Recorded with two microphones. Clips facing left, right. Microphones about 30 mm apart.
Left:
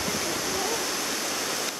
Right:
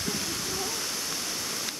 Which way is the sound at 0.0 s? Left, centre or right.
Left.